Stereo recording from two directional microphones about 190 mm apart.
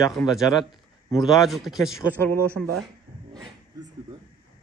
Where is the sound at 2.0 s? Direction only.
10° left (ahead or behind).